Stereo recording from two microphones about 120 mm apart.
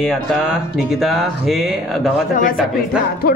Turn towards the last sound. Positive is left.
turn(degrees=-10)  # may be behind; listen again after turning